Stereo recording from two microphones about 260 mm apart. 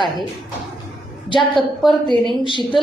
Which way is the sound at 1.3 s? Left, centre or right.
Centre.